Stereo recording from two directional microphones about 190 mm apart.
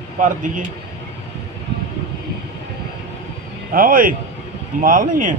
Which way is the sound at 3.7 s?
50° right (ahead or behind).